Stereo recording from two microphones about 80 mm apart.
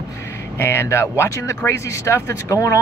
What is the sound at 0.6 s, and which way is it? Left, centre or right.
Speech, left.